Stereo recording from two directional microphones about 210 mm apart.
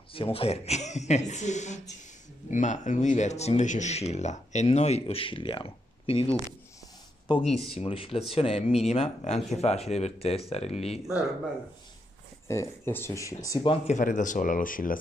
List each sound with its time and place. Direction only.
0.1 s speech: 25° left (ahead or behind)
12.4 s speech: 10° left (ahead or behind)
13.9 s speech: 35° left (ahead or behind)